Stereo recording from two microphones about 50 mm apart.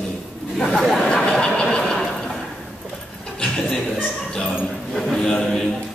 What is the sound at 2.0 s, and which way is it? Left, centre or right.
Neigh, centre.